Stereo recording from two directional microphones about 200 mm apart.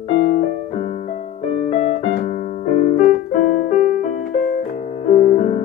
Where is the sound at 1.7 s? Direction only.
35° left (ahead or behind).